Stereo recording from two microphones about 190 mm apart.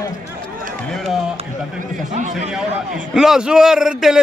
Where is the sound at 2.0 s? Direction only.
40° right (ahead or behind).